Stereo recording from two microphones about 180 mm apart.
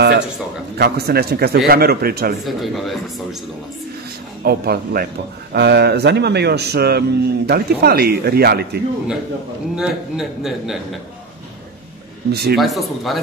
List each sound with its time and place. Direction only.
0.7 s a man's voice: 60° right (ahead or behind)
2.4 s a man's voice: centre (ahead or behind)
4.5 s a man's voice: 55° right (ahead or behind)
9.8 s a man's voice: centre (ahead or behind)
12.3 s a man's voice: 60° right (ahead or behind)
12.5 s a man's voice: centre (ahead or behind)